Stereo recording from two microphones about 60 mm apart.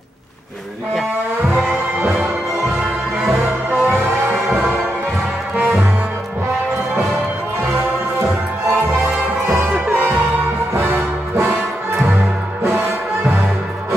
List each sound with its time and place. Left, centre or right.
1.5 s music: right
3.8 s music: right
10.7 s music: right